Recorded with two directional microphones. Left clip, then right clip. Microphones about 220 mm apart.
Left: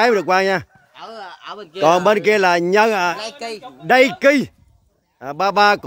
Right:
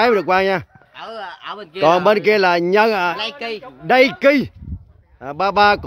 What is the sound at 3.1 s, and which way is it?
Speech, 35° right (ahead or behind).